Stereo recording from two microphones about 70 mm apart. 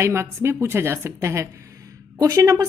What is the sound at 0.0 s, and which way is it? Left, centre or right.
A woman's voice, right.